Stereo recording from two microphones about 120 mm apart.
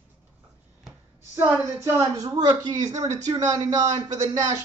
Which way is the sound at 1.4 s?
20° right (ahead or behind).